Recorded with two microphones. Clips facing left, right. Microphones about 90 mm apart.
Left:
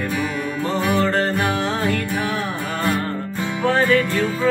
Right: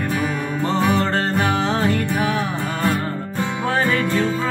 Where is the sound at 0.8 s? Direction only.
25° right (ahead or behind).